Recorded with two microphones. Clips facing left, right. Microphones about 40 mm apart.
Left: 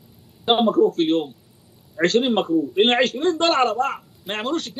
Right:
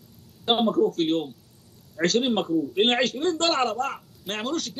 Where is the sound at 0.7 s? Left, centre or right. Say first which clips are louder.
Left 5 dB; centre.